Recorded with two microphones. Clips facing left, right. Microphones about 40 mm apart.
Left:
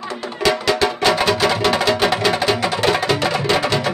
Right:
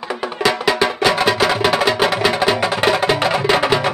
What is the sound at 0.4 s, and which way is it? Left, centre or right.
Music, centre.